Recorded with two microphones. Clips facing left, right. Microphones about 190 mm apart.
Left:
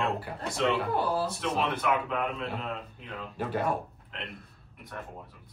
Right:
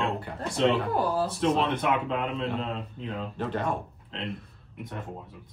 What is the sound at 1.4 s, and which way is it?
Speech, 30° right (ahead or behind).